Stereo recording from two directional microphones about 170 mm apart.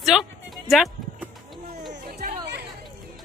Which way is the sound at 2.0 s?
65° right (ahead or behind).